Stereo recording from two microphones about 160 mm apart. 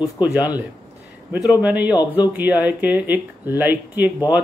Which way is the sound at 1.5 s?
10° right (ahead or behind).